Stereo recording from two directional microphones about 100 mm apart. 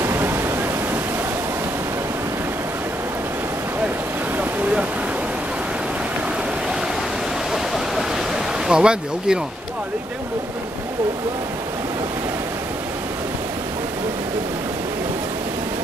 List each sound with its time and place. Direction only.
0.0 s waterfall: 25° right (ahead or behind)
7.5 s a sound: 5° right (ahead or behind)
8.6 s speech: 10° right (ahead or behind)